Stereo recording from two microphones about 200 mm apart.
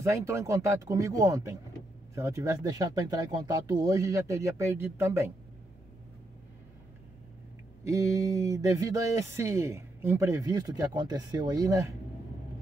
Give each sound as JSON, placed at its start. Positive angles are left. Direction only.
{"t": 0.0, "sound": "speech", "side_deg": -15}
{"t": 7.8, "sound": "speech", "side_deg": -15}